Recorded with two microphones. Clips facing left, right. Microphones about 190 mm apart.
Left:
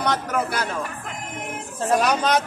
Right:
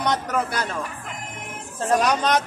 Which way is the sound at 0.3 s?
5° left (ahead or behind).